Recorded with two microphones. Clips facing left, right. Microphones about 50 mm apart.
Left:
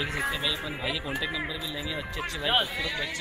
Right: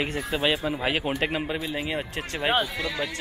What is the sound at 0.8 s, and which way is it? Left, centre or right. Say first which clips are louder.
Speech: right 5 dB; right.